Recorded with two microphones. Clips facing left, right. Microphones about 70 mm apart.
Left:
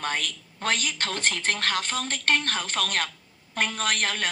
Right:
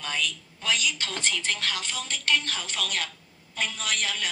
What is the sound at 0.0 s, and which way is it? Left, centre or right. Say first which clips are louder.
A woman's voice: left 2 dB; left.